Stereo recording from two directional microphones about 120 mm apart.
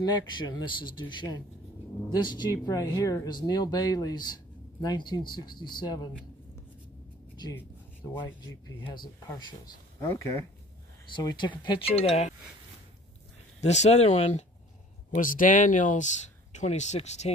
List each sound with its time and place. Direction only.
0.0 s speech: 40° left (ahead or behind)
8.2 s speech: 40° left (ahead or behind)
9.9 s speech: 25° left (ahead or behind)
11.1 s speech: 40° left (ahead or behind)
11.9 s speech: 55° left (ahead or behind)
13.6 s speech: 70° left (ahead or behind)
15.0 s speech: 90° left
16.5 s speech: 75° left (ahead or behind)